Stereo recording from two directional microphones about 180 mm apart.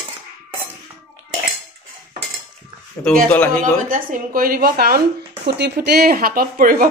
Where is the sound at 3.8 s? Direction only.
50° right (ahead or behind).